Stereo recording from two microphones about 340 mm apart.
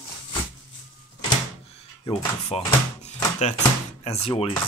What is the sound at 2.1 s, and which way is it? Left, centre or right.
Speech, centre.